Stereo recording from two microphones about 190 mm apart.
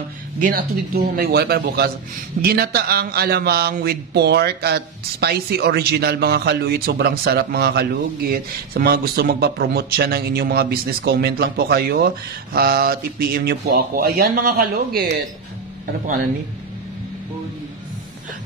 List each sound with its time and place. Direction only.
0.4 s a man's voice: 50° right (ahead or behind)